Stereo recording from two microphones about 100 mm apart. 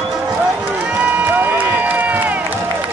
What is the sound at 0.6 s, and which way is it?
Run, 20° right (ahead or behind).